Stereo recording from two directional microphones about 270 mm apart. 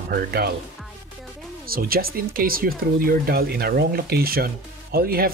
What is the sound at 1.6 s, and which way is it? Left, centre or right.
Speech, right.